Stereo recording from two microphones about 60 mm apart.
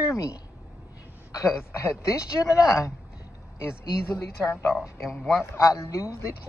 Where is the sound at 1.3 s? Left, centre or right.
Left.